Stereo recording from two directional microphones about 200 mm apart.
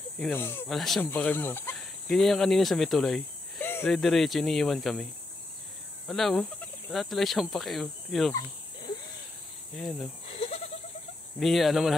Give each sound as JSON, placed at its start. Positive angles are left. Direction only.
{"t": 0.2, "sound": "speech", "side_deg": 10}
{"t": 0.7, "sound": "speech", "side_deg": 0}
{"t": 6.0, "sound": "speech", "side_deg": 0}
{"t": 9.8, "sound": "speech", "side_deg": 0}
{"t": 10.2, "sound": "bleat", "side_deg": 30}
{"t": 11.3, "sound": "speech", "side_deg": 0}